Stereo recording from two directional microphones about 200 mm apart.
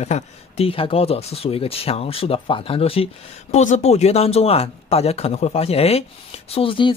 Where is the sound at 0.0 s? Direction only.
30° left (ahead or behind).